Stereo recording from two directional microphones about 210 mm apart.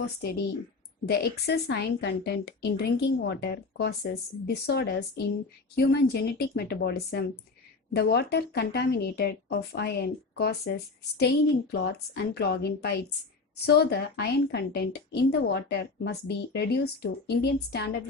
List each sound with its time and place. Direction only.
1.0 s a woman's voice: 50° left (ahead or behind)
11.7 s a woman's voice: 50° left (ahead or behind)